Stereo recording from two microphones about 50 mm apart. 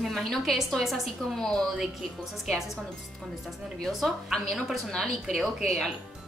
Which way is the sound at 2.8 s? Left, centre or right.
Centre.